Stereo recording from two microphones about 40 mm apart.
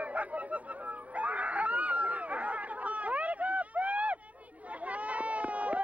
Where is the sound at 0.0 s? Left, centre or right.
Right.